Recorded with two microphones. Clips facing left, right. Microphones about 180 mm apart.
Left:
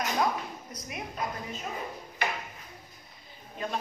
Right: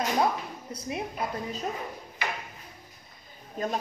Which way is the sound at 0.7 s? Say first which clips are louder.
Right 6 dB; 30° right (ahead or behind).